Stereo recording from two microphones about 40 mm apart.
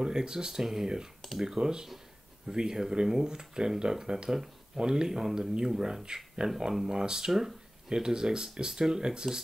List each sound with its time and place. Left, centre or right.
0.0 s speech: centre
6.9 s speech: centre